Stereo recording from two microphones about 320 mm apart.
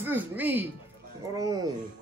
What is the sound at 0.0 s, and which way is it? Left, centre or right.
A man's voice, centre.